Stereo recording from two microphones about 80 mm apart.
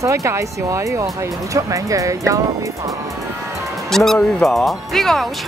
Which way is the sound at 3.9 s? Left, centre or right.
Centre.